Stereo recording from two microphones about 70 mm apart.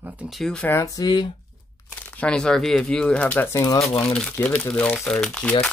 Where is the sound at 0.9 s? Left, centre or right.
Left.